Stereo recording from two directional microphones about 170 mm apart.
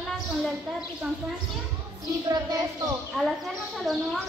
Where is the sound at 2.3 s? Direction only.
20° right (ahead or behind).